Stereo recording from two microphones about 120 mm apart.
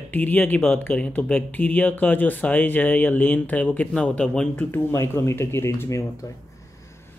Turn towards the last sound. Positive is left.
turn(degrees=25)  # may be behind; listen again after turning